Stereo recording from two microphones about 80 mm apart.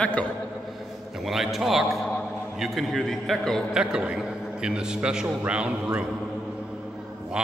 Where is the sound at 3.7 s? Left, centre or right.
Centre.